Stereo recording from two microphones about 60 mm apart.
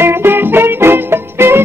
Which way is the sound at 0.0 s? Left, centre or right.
Right.